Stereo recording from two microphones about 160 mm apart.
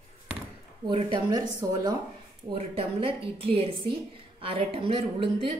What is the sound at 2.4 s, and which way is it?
A woman's voice, 35° right (ahead or behind).